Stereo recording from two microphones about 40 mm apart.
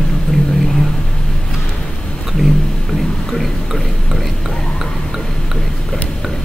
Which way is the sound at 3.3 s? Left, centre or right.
Centre.